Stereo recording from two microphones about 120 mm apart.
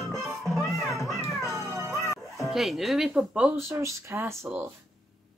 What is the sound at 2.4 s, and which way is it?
Speech, centre (ahead or behind).